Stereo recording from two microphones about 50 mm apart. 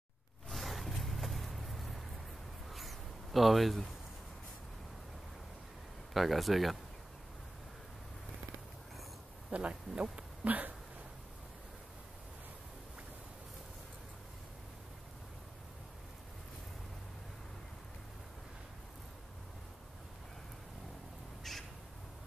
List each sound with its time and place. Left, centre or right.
0.5 s a sound: centre
6.1 s speech: centre
9.5 s speech: right
21.5 s crow: centre